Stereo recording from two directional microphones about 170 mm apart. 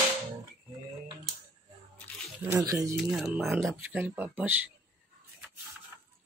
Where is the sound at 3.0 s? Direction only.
5° right (ahead or behind).